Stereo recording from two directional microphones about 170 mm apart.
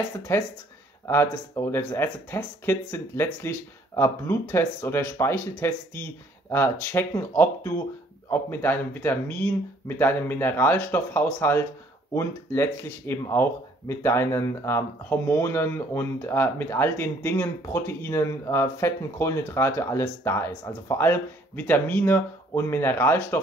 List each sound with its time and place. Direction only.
0.3 s speech: 15° left (ahead or behind)